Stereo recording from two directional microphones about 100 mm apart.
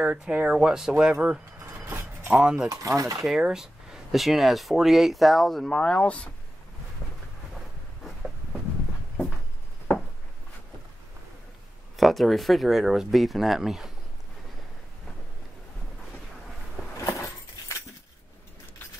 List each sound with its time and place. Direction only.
0.0 s speech: 10° right (ahead or behind)
1.9 s a sound: 20° right (ahead or behind)
2.3 s speech: 5° right (ahead or behind)
2.7 s speech: 35° right (ahead or behind)
3.3 s speech: 5° right (ahead or behind); by 6.3 s 15° left (ahead or behind)
12.0 s speech: centre (ahead or behind)